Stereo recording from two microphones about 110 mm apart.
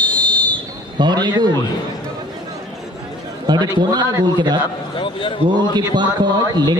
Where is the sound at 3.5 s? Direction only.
40° right (ahead or behind).